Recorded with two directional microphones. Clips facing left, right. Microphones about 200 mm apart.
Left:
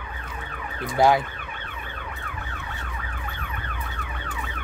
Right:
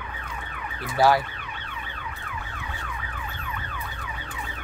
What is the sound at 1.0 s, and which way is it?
Speech, 20° left (ahead or behind).